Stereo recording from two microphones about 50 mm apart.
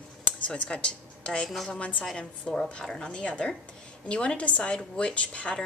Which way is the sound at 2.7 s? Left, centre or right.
Centre.